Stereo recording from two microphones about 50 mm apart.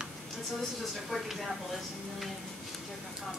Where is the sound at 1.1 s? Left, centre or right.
Centre.